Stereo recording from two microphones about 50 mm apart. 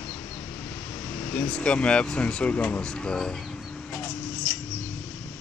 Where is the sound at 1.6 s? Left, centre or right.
Left.